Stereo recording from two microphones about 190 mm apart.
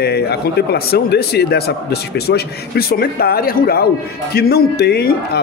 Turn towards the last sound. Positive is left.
turn(degrees=55)  # may be behind; listen again after turning